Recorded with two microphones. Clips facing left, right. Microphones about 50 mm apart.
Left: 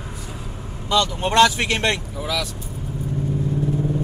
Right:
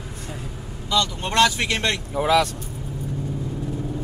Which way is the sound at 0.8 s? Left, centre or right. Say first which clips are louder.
Left 3 dB; centre.